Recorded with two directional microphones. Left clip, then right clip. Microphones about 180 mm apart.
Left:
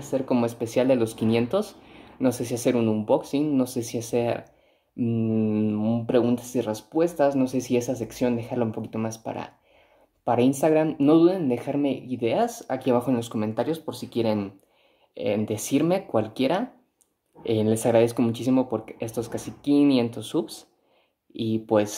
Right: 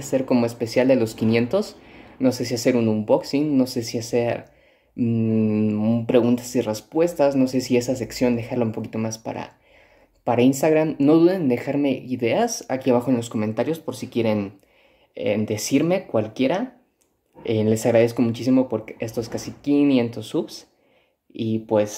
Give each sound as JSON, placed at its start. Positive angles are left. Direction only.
{"t": 0.1, "sound": "a woman's voice", "side_deg": 0}
{"t": 21.6, "sound": "speech", "side_deg": 20}